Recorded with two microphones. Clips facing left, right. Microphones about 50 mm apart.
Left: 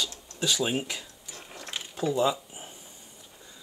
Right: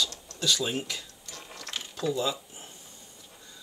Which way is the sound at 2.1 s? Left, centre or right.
Left.